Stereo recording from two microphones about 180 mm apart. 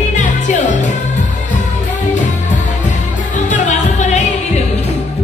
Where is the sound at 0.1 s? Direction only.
45° left (ahead or behind).